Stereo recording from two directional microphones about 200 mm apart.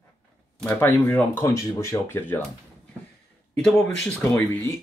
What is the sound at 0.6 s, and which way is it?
Speech, 10° left (ahead or behind).